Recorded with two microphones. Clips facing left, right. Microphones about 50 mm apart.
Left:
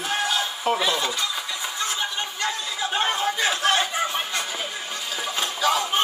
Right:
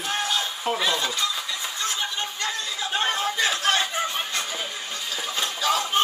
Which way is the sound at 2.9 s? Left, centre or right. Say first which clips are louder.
Left 1 dB; centre.